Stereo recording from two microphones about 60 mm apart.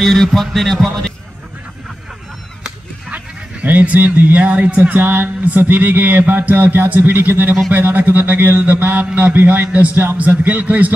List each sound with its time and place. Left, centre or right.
0.0 s music: centre
3.6 s speech: right